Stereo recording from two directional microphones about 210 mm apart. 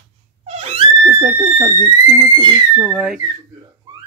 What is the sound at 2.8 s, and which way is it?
Speech, 5° right (ahead or behind).